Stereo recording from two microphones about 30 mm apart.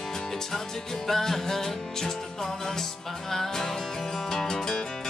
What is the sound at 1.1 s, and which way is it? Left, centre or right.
Music, centre.